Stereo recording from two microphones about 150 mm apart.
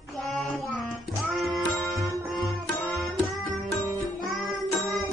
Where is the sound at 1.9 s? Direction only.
20° right (ahead or behind).